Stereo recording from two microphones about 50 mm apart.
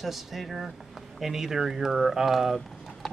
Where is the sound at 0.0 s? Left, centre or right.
Centre.